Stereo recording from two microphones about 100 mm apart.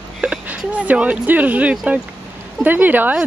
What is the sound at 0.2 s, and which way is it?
Speech, 10° right (ahead or behind).